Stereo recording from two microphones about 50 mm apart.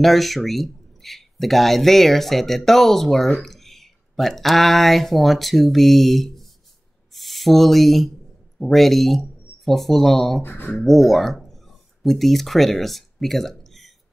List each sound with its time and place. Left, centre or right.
0.0 s speech: centre
10.4 s speech: left
10.9 s speech: centre